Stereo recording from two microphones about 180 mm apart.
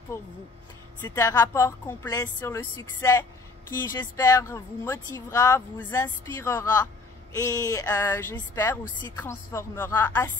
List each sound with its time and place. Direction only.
0.1 s a woman's voice: 15° left (ahead or behind)